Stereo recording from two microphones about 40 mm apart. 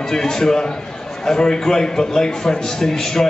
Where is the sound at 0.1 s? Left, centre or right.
Centre.